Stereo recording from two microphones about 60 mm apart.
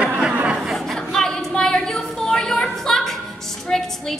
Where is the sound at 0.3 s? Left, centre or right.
Right.